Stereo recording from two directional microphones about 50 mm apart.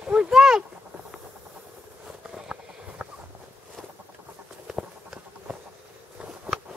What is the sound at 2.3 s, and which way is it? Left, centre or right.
Run, centre.